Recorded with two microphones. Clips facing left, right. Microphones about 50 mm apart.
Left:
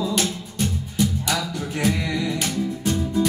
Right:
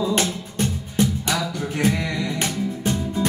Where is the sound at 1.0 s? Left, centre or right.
Right.